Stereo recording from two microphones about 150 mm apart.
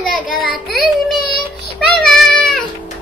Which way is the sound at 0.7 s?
Centre (ahead or behind).